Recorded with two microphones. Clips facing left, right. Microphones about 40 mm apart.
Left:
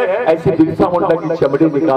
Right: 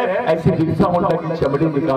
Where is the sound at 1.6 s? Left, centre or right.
Right.